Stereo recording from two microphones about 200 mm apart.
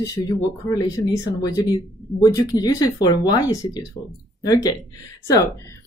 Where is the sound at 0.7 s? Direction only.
15° left (ahead or behind).